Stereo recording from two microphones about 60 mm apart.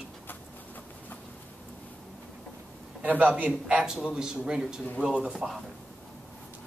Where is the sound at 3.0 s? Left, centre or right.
Right.